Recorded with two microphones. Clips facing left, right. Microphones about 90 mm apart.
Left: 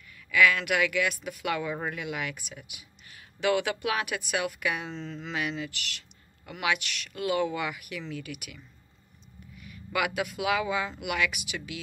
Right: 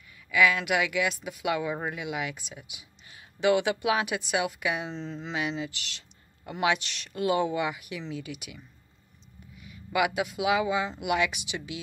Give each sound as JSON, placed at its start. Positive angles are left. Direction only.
{"t": 0.1, "sound": "speech", "side_deg": -20}